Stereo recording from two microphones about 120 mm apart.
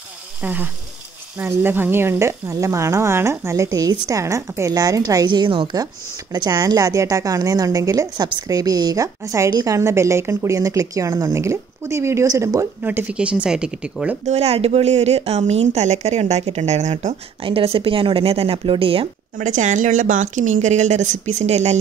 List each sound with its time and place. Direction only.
0.4 s speech: 15° right (ahead or behind)
9.5 s a woman's voice: 35° right (ahead or behind)
9.8 s speech: 25° right (ahead or behind)
12.8 s speech: 15° right (ahead or behind)
14.2 s speech: 65° right (ahead or behind)
17.4 s a woman's voice: 50° right (ahead or behind)
19.4 s a woman's voice: 90° right; by 21.7 s 70° right (ahead or behind)